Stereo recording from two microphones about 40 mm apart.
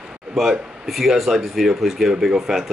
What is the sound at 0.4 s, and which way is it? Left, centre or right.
Speech, centre.